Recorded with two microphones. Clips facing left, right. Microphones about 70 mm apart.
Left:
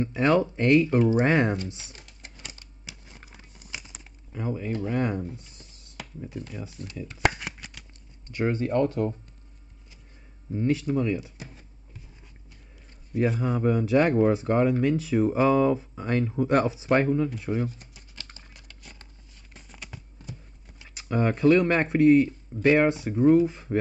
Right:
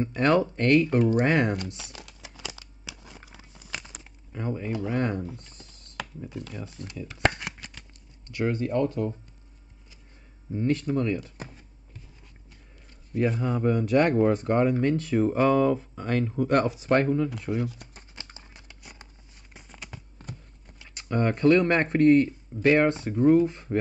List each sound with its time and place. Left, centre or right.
0.0 s speech: centre
1.2 s speech: centre
1.9 s a sound: right
3.9 s a sound: centre
4.8 s speech: centre
7.0 s shuffling cards: centre
8.3 s speech: left
8.5 s speech: left
10.5 s speech: centre
13.1 s speech: centre
18.1 s a sound: right; by 20.0 s centre
20.3 s clip-clop: right
21.1 s speech: centre